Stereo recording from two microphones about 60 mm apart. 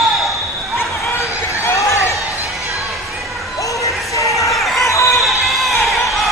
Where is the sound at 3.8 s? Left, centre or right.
Left.